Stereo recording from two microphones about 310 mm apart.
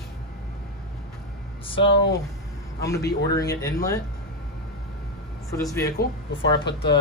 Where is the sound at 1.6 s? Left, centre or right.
Centre.